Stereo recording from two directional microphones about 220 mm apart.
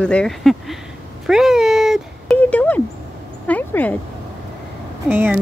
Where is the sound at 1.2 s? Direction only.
Centre (ahead or behind).